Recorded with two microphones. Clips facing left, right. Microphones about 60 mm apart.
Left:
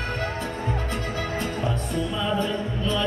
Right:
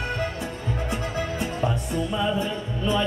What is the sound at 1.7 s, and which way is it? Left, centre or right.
Music, centre.